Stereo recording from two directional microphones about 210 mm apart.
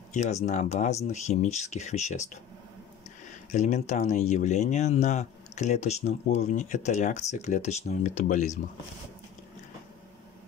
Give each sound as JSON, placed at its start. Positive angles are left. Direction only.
{"t": 0.1, "sound": "speech", "side_deg": 35}
{"t": 3.5, "sound": "speech", "side_deg": 35}